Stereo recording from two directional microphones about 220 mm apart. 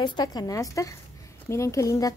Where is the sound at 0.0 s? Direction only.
20° left (ahead or behind).